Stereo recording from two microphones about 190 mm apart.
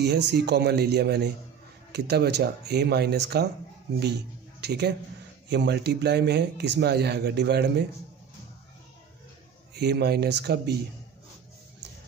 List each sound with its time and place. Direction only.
0.0 s speech: 60° right (ahead or behind)
4.6 s speech: 60° right (ahead or behind)
9.8 s speech: 60° right (ahead or behind)